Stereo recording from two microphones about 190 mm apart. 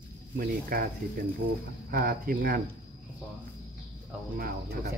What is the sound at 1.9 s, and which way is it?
Speech, 50° right (ahead or behind).